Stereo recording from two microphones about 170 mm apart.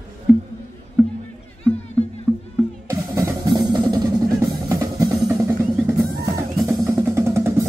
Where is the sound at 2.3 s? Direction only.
10° right (ahead or behind).